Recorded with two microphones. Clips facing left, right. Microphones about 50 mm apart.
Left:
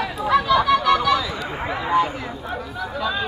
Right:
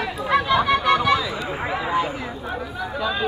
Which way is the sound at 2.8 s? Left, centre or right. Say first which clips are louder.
Left 1 dB; centre.